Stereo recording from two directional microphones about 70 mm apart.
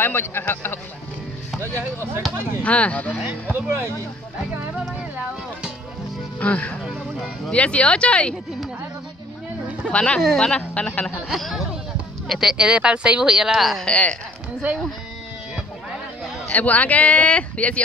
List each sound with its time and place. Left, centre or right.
0.0 s a man's voice: left
2.6 s speech: centre
3.5 s speech: right
6.4 s speech: centre
9.8 s speech: centre
11.1 s speech: centre
13.8 s speech: centre
16.5 s speech: left